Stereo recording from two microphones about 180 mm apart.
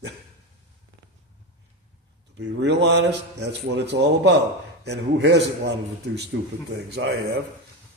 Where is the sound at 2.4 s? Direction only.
70° right (ahead or behind).